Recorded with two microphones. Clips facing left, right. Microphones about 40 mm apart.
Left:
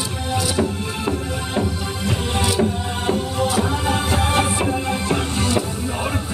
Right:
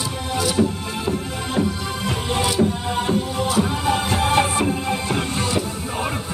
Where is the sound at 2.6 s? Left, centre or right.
Left.